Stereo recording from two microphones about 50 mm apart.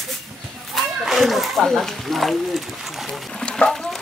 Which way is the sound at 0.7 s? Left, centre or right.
Centre.